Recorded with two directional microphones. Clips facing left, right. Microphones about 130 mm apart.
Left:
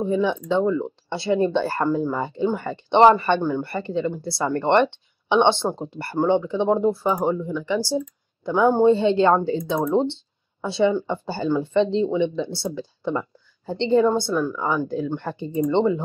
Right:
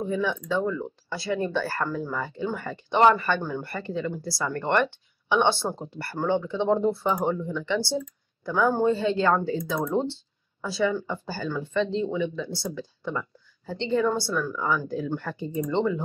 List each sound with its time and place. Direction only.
0.0 s speech: 20° left (ahead or behind)